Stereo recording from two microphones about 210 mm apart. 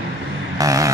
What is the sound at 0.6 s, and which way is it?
Vehicle, 15° right (ahead or behind).